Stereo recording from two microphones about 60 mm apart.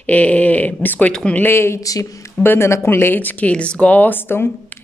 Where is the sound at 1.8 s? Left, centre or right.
Left.